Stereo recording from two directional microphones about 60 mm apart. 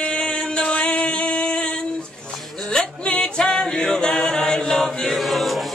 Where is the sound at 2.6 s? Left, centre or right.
Centre.